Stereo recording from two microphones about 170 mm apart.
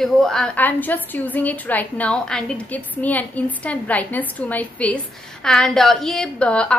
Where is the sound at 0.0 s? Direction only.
Centre (ahead or behind).